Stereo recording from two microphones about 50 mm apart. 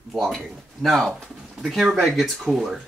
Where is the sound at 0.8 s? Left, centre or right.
Centre.